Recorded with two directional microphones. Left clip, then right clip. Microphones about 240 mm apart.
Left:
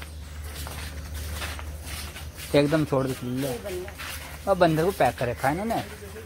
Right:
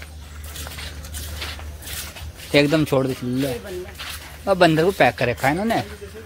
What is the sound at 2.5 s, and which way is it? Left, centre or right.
Speech, centre.